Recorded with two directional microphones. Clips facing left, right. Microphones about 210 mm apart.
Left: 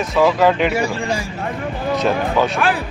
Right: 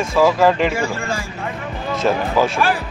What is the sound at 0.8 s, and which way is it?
Speech, 15° left (ahead or behind).